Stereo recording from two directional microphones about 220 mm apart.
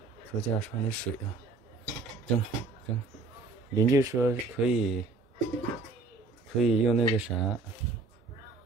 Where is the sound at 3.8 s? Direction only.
15° right (ahead or behind).